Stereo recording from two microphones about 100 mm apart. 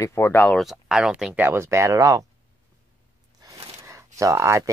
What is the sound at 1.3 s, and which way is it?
Speech, 20° right (ahead or behind).